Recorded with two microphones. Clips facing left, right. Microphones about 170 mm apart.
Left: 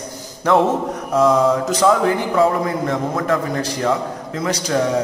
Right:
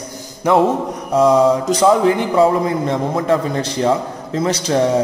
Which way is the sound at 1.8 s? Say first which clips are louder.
Right 3 dB; 20° right (ahead or behind).